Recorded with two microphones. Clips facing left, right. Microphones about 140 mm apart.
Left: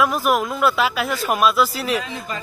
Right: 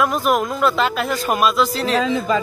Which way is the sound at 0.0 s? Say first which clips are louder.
Right 1 dB; 5° left (ahead or behind).